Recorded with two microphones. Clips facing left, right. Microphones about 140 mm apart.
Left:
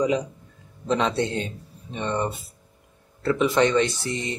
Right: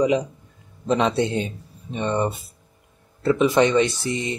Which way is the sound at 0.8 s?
15° right (ahead or behind).